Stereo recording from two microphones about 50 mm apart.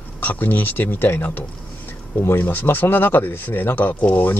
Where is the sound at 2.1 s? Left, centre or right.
Left.